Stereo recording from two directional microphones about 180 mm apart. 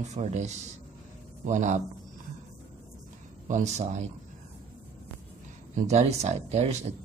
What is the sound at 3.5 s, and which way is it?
Speech, 40° right (ahead or behind).